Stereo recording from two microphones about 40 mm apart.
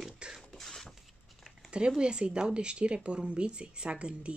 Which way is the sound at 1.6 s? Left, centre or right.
Right.